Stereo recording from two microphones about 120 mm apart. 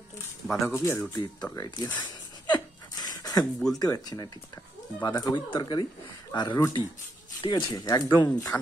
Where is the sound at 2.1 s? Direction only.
35° left (ahead or behind).